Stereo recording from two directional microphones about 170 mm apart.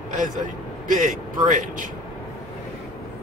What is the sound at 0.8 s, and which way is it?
A man's voice, 50° right (ahead or behind).